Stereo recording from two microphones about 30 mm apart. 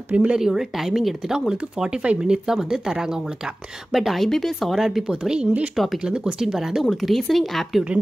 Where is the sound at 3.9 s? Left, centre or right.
Centre.